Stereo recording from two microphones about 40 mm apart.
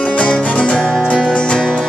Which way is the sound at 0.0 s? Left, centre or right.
Left.